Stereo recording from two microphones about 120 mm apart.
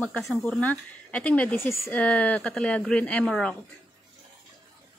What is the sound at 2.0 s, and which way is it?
Speech, 10° left (ahead or behind).